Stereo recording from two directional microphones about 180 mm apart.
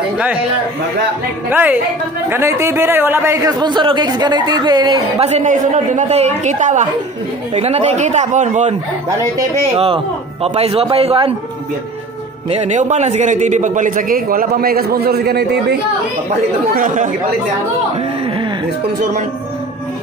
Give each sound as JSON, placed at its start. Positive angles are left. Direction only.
{"t": 1.5, "sound": "a woman's voice", "side_deg": -10}
{"t": 5.3, "sound": "a man's voice", "side_deg": -45}
{"t": 9.8, "sound": "speech", "side_deg": -30}
{"t": 12.4, "sound": "a man's voice", "side_deg": -40}
{"t": 16.7, "sound": "a man's voice", "side_deg": -45}